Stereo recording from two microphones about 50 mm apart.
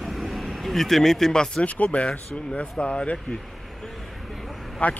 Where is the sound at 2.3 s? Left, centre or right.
Left.